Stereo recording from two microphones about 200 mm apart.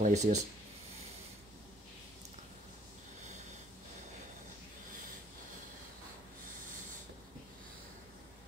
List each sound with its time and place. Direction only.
0.0 s speech: 35° right (ahead or behind)